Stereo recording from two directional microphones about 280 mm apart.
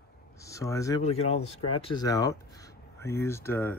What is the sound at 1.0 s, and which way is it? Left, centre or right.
Speech, left.